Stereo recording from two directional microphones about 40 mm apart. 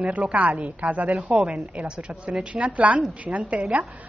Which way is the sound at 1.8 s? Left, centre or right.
Right.